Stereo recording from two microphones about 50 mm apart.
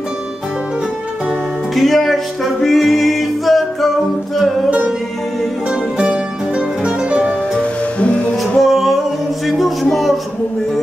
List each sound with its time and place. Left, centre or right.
1.8 s music: centre
4.6 s music: right
8.5 s music: centre